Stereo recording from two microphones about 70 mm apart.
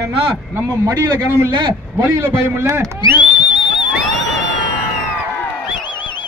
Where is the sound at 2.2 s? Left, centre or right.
Right.